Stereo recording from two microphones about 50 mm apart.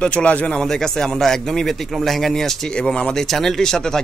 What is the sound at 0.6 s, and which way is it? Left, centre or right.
Speech, centre.